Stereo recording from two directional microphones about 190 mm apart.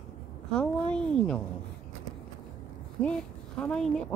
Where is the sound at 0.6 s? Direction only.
5° left (ahead or behind).